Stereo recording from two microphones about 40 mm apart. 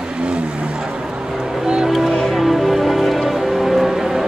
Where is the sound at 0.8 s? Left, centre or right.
Centre.